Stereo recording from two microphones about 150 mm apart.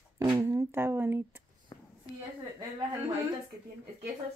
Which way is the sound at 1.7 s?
25° left (ahead or behind).